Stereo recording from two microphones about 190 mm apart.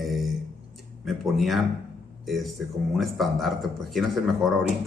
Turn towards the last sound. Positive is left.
turn(degrees=0)  # may be behind; listen again after turning